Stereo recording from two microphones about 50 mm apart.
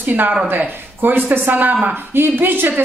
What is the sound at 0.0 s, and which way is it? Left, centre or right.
A woman's voice, right.